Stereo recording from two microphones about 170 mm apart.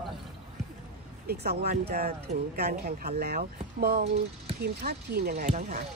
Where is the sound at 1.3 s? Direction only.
70° right (ahead or behind).